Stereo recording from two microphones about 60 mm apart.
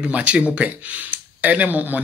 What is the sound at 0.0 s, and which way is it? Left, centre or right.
Speech, right.